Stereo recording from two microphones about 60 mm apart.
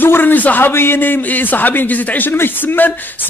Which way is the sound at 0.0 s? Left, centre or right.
Left.